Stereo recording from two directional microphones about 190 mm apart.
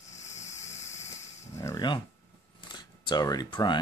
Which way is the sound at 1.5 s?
20° left (ahead or behind).